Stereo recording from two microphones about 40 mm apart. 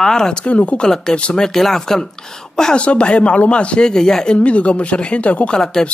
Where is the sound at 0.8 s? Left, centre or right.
Centre.